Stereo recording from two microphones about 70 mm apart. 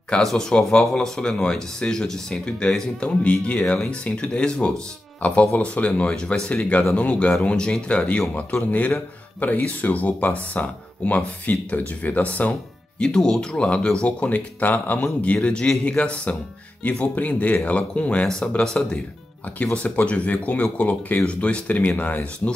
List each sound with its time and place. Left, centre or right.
0.2 s speech: centre
9.4 s speech: left